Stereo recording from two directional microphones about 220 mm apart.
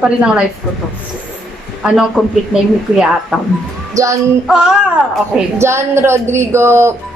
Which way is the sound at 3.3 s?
Centre (ahead or behind).